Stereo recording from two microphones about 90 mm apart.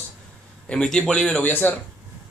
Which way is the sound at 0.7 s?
10° left (ahead or behind).